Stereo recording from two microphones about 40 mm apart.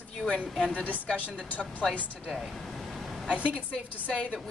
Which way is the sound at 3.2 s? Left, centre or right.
Right.